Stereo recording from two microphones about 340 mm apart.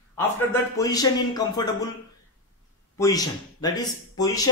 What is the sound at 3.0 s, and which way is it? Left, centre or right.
Speech, centre.